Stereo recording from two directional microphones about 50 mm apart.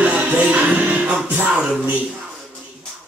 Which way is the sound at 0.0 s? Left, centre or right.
Right.